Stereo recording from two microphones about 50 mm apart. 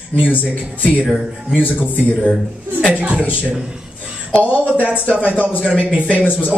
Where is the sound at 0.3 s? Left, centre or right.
Left.